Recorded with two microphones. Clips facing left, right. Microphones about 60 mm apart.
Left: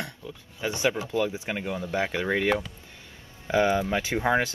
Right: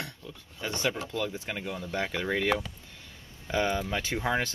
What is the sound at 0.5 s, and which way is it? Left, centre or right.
Speech, centre.